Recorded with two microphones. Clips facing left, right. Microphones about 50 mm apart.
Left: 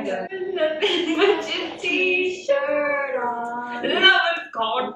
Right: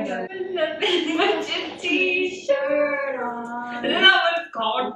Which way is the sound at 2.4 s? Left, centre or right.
Left.